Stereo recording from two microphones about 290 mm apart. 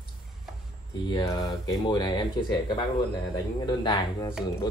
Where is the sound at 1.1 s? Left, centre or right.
Centre.